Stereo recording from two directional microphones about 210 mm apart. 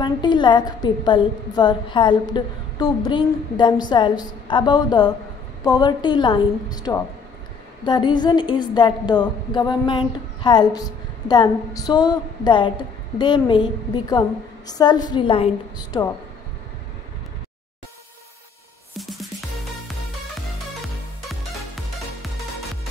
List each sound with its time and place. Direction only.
0.0 s a woman's voice: 20° left (ahead or behind)
18.9 s music: centre (ahead or behind)